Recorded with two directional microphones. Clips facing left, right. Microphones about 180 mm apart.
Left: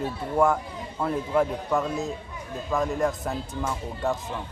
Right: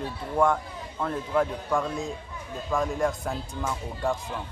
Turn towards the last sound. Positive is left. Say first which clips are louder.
# left 1 dB
turn(degrees=0)  # may be behind; listen again after turning